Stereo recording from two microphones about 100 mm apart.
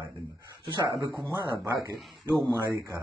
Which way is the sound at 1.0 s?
40° right (ahead or behind).